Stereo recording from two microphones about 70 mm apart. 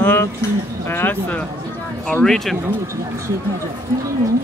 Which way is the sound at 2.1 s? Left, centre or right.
Centre.